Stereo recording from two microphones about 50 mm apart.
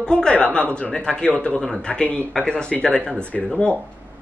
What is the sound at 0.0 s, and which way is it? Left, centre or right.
Speech, centre.